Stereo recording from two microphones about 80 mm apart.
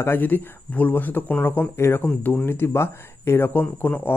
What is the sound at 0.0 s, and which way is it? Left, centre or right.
Speech, left.